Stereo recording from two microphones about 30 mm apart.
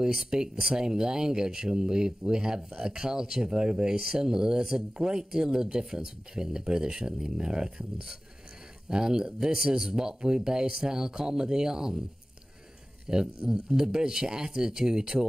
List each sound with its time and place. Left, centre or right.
0.0 s speech: centre
13.0 s a man's voice: right